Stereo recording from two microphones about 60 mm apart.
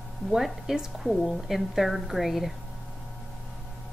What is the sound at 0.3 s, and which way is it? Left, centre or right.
A woman's voice, centre.